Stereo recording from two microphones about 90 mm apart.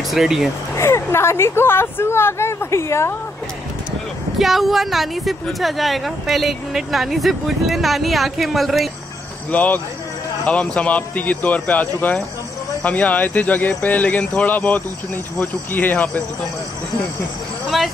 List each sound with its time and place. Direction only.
0.1 s speech: 5° right (ahead or behind)
0.7 s a woman's voice: 30° left (ahead or behind)
4.4 s speech: centre (ahead or behind)
9.5 s a woman's voice: 20° left (ahead or behind)
17.6 s speech: centre (ahead or behind)